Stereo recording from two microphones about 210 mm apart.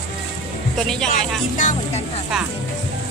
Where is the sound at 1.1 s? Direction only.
40° left (ahead or behind).